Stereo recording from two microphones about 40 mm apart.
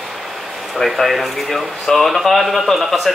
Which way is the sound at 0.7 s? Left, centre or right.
Centre.